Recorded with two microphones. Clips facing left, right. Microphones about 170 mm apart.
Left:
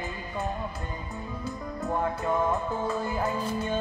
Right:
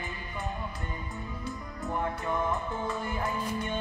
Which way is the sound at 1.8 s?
35° left (ahead or behind).